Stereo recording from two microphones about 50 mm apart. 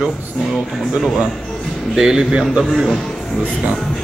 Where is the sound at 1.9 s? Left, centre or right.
Centre.